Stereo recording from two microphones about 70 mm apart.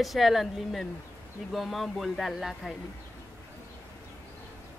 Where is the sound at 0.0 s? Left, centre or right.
Centre.